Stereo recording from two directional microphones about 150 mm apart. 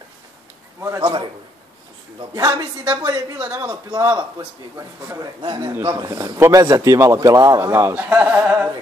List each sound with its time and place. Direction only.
0.7 s a man's voice: 20° right (ahead or behind)
1.0 s a man's voice: 35° right (ahead or behind); by 8.6 s 10° right (ahead or behind)